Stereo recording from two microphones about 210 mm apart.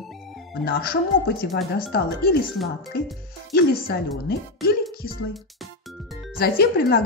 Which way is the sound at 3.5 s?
50° left (ahead or behind).